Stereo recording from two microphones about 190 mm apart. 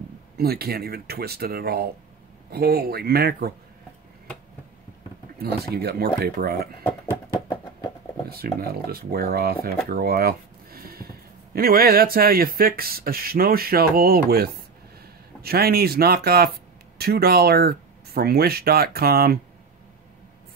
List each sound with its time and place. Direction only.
0.4 s speech: 55° right (ahead or behind)
5.4 s speech: 55° right (ahead or behind)
8.3 s speech: 55° right (ahead or behind)